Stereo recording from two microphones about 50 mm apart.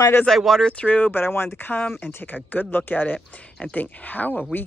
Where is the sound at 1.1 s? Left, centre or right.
Left.